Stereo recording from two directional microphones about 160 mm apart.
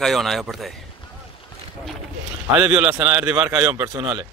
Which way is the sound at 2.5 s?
5° right (ahead or behind).